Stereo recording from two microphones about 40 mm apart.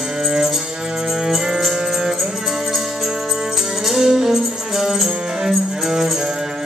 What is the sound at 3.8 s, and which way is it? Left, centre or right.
Music, centre.